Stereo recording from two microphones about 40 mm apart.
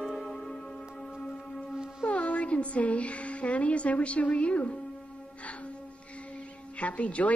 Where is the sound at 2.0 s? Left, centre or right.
Left.